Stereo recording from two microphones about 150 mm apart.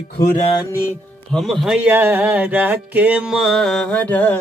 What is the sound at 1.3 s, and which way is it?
Speech, centre (ahead or behind).